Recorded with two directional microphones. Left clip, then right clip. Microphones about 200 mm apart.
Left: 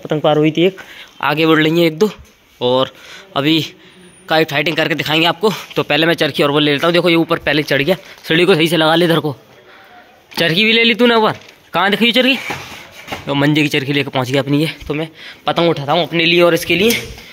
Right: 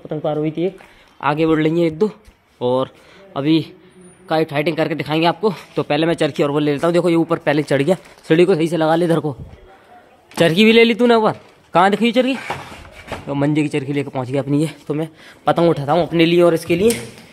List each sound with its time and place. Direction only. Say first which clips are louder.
0.1 s speech: left 8 dB; 25° left (ahead or behind)
1.2 s speech: left 4 dB; centre (ahead or behind); by 8.3 s 15° right (ahead or behind)
8.3 s speech: left 2 dB; centre (ahead or behind)
10.3 s a man's voice: even; 15° right (ahead or behind)
14.6 s a man's voice: left 3 dB; 15° right (ahead or behind)
15.7 s a man's voice: left 2 dB; 30° right (ahead or behind); by 17.0 s 5° right (ahead or behind)